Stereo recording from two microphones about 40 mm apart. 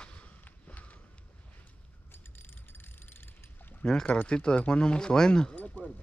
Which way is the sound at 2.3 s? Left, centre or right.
Left.